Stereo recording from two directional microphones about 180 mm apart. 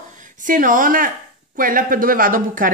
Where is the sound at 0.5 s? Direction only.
50° right (ahead or behind).